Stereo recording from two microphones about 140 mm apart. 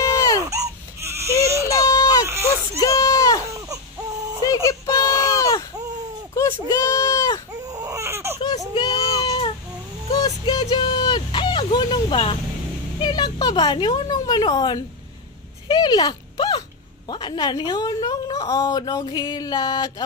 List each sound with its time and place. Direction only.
0.1 s baby cry: 25° left (ahead or behind)
1.0 s baby cry: 20° right (ahead or behind)
1.7 s a sound: 25° left (ahead or behind)
2.2 s whimper: 20° right (ahead or behind)
2.8 s baby cry: 25° left (ahead or behind)
3.5 s baby cry: 25° right (ahead or behind)
4.6 s a sound: 25° left (ahead or behind)
7.6 s baby cry: 25° right (ahead or behind)
8.7 s child singing: 30° left (ahead or behind)
10.1 s vehicle: 30° left (ahead or behind)
13.0 s a sound: 30° left (ahead or behind)
17.1 s a woman's voice: 30° left (ahead or behind)